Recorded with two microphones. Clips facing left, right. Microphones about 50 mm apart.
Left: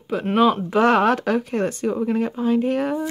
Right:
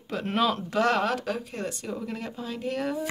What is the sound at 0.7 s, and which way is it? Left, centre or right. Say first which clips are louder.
Speech: left 8 dB; left.